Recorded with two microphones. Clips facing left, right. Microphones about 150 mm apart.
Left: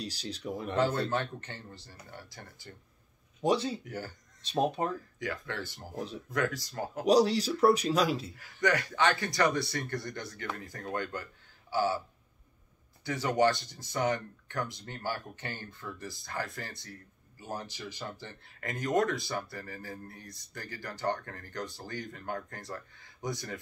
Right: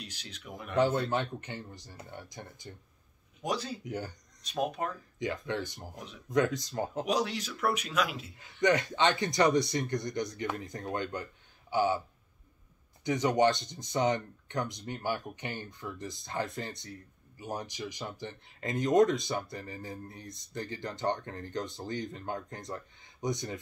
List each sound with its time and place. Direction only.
0.0 s speech: 35° left (ahead or behind)
0.7 s speech: 15° right (ahead or behind)
3.4 s speech: 25° left (ahead or behind)
3.8 s speech: 20° right (ahead or behind)
4.4 s speech: 30° left (ahead or behind)
5.2 s speech: 20° right (ahead or behind)
7.1 s speech: 35° left (ahead or behind)
8.4 s speech: 20° right (ahead or behind)
13.0 s speech: 20° right (ahead or behind)